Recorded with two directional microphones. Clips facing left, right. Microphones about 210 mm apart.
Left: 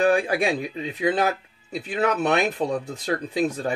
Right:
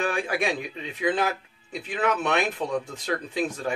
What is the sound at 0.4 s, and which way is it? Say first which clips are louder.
Speech: left 4 dB; 35° left (ahead or behind).